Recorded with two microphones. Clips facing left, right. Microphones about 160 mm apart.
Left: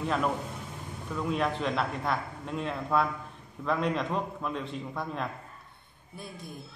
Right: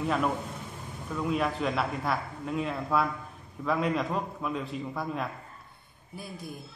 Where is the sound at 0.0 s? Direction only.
5° right (ahead or behind).